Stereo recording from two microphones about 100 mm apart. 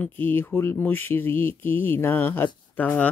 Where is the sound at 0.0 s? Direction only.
20° left (ahead or behind).